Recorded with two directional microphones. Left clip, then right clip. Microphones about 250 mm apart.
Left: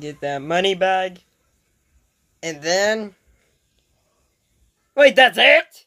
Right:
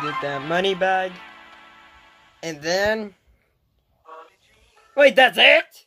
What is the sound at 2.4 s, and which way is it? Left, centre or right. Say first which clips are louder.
Speech: left 2 dB; centre.